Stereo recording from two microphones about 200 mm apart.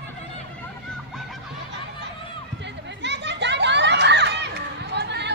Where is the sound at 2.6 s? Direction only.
60° right (ahead or behind).